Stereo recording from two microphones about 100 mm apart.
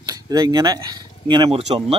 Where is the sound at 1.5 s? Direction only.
70° right (ahead or behind).